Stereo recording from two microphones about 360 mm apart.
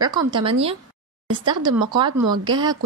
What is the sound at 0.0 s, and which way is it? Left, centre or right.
A woman's voice, centre.